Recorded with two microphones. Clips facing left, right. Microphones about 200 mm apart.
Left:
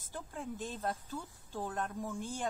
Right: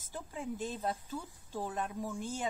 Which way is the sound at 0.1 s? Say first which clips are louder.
Right 2 dB; 10° right (ahead or behind).